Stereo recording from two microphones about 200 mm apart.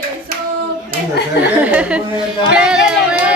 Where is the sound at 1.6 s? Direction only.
5° right (ahead or behind).